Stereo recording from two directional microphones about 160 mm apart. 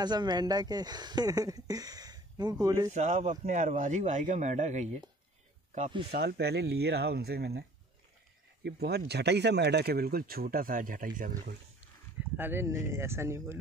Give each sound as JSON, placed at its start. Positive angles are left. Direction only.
{"t": 0.0, "sound": "speech", "side_deg": -25}
{"t": 2.9, "sound": "a man's voice", "side_deg": -45}
{"t": 6.1, "sound": "speech", "side_deg": -90}
{"t": 8.6, "sound": "speech", "side_deg": -85}
{"t": 12.2, "sound": "speech", "side_deg": -15}